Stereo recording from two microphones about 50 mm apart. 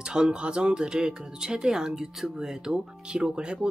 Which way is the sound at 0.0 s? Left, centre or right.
Centre.